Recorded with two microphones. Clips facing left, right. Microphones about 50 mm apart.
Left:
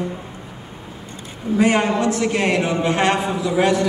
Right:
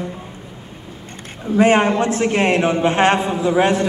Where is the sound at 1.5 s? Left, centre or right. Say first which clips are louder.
Right 3 dB; right.